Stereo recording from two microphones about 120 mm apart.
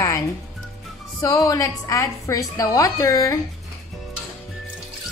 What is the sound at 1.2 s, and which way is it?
A woman's voice, 30° left (ahead or behind).